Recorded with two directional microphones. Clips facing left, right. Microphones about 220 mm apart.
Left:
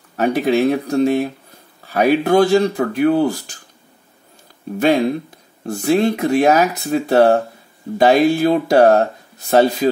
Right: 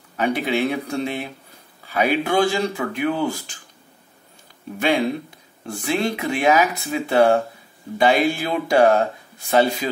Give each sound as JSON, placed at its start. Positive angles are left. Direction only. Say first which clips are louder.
{"t": 0.1, "sound": "speech", "louder": "left 6 dB", "side_deg": 40}
{"t": 4.7, "sound": "speech", "louder": "left 5 dB", "side_deg": 40}